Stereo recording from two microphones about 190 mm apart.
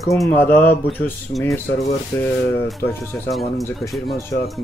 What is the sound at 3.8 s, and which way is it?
Speech, centre (ahead or behind).